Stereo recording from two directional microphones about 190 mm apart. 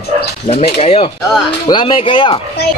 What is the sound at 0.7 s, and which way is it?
Speech, 35° left (ahead or behind).